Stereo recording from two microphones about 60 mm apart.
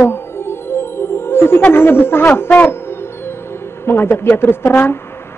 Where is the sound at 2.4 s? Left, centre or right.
Left.